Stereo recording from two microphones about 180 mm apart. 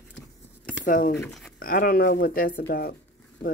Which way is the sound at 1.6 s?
50° left (ahead or behind).